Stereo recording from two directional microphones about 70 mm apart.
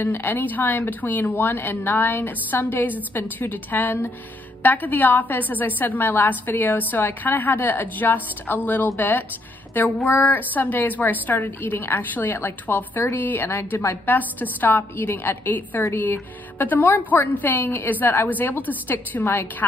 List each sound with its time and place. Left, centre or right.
0.0 s a woman's voice: left
16.8 s a woman's voice: left